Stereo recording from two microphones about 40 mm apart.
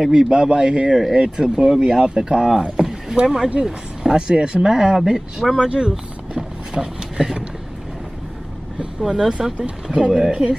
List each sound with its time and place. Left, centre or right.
0.0 s speech: centre
4.3 s speech: right
5.6 s a sound: right
9.1 s speech: centre